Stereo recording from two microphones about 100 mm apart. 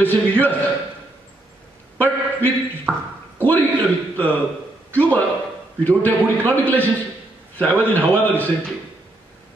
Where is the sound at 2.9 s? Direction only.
20° right (ahead or behind).